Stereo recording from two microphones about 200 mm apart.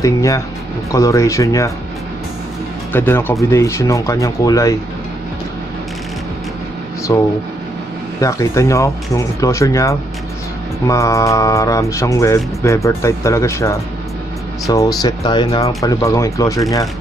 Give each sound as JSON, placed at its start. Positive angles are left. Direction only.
{"t": 0.0, "sound": "speech", "side_deg": 15}
{"t": 2.9, "sound": "speech", "side_deg": 10}
{"t": 7.1, "sound": "speech", "side_deg": 20}
{"t": 15.0, "sound": "speech", "side_deg": 20}